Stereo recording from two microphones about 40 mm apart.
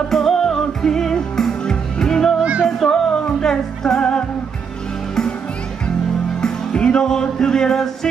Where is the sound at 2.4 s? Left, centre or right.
Right.